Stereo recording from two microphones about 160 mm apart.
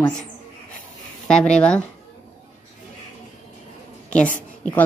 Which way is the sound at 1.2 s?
5° left (ahead or behind).